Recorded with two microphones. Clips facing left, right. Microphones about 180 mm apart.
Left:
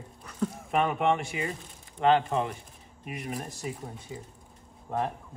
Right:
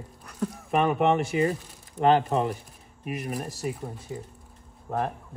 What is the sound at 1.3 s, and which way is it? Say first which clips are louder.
Speech: right 9 dB; 40° right (ahead or behind).